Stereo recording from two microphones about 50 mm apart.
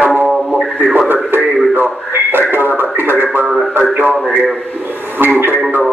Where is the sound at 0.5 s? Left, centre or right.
Right.